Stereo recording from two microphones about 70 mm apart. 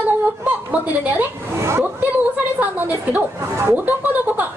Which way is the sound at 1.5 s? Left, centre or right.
Right.